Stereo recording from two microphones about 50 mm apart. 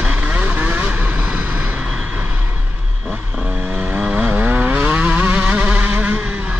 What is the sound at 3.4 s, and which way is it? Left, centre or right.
Vehicle, centre.